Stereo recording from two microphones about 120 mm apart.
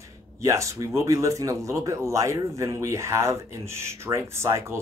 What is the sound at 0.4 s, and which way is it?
Speech, 25° right (ahead or behind).